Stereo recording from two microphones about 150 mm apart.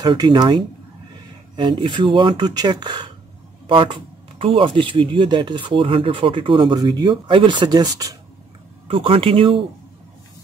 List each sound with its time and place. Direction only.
0.0 s speech: 30° right (ahead or behind)
8.8 s speech: 40° right (ahead or behind)